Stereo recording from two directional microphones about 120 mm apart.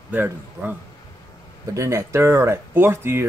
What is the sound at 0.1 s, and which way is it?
Speech, 15° right (ahead or behind).